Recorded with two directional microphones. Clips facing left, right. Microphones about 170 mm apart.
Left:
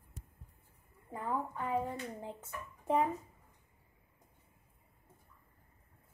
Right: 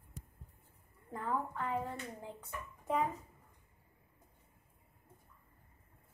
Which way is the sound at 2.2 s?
25° left (ahead or behind).